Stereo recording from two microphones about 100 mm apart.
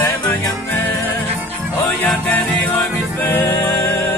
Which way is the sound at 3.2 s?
20° left (ahead or behind).